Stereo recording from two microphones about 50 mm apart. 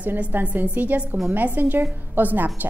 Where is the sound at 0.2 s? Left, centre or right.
Right.